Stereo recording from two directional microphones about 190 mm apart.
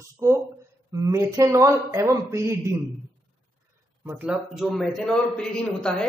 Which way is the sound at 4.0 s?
10° right (ahead or behind).